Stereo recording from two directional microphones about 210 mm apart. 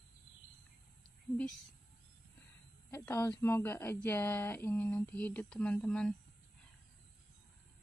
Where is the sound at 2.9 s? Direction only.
10° left (ahead or behind).